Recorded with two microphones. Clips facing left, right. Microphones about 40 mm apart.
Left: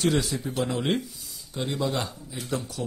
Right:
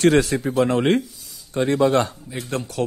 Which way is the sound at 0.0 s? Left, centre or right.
Right.